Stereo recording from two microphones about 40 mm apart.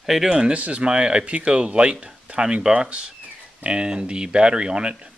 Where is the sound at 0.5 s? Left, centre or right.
Right.